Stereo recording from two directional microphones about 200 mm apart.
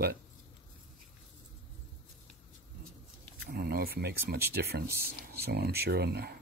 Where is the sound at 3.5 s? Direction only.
50° right (ahead or behind).